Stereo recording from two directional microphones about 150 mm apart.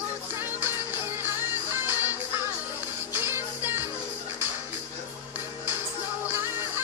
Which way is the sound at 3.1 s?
15° right (ahead or behind).